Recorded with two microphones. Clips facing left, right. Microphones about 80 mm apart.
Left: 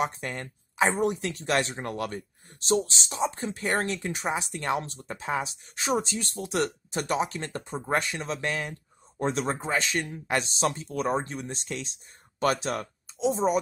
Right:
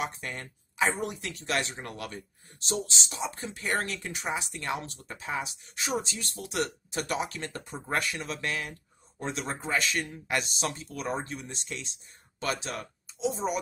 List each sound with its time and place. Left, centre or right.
0.0 s speech: left